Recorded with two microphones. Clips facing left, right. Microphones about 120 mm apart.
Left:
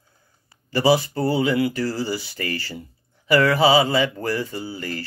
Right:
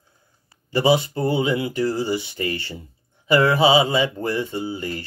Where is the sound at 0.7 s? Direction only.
20° right (ahead or behind).